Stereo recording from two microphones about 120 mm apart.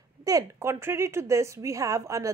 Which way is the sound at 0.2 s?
30° right (ahead or behind).